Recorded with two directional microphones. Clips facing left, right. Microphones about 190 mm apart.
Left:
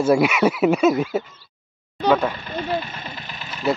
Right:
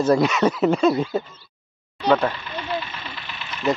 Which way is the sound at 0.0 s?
10° left (ahead or behind).